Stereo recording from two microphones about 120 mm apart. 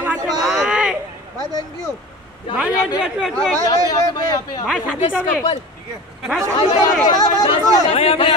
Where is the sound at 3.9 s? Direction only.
30° left (ahead or behind).